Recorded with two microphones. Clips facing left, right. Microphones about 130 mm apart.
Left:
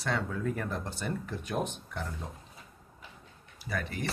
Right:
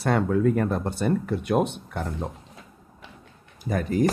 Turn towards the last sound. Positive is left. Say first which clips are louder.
# right 12 dB
turn(degrees=-45)  # may be behind; listen again after turning